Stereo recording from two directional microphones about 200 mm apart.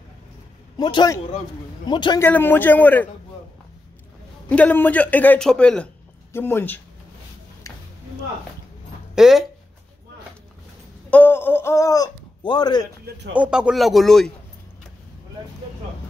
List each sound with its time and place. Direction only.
0.7 s a man's voice: 20° left (ahead or behind)
2.2 s a man's voice: 10° left (ahead or behind)
4.5 s a man's voice: 10° left (ahead or behind)
9.1 s speech: centre (ahead or behind)
11.1 s speech: 10° left (ahead or behind)
13.3 s speech: 5° right (ahead or behind)